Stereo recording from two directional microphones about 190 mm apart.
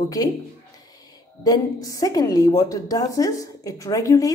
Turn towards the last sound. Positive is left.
turn(degrees=20)  # may be behind; listen again after turning